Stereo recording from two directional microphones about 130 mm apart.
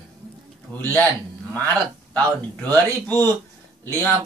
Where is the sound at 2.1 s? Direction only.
10° left (ahead or behind).